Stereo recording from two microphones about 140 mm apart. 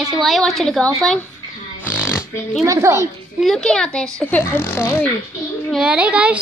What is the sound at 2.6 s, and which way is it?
Speech, 20° right (ahead or behind).